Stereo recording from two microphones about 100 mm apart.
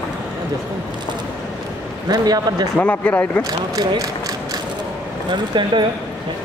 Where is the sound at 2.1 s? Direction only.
40° right (ahead or behind).